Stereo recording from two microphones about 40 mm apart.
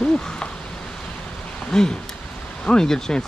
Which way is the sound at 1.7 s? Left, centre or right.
Centre.